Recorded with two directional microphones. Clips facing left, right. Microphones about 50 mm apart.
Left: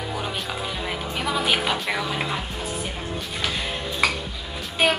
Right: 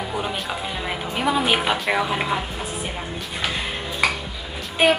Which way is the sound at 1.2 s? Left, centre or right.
Centre.